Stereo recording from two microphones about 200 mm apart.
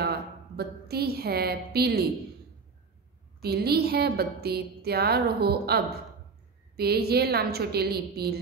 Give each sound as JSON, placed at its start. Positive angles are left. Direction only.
{"t": 0.0, "sound": "a woman's voice", "side_deg": -55}
{"t": 3.3, "sound": "a woman's voice", "side_deg": -50}